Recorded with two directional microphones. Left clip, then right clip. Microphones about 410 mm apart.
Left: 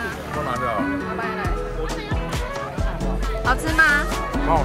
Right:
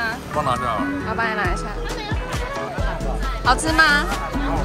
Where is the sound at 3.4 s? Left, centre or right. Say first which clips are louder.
Right 2 dB; centre.